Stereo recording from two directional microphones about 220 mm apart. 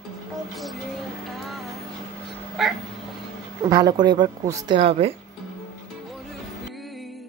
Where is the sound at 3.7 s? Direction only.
15° right (ahead or behind).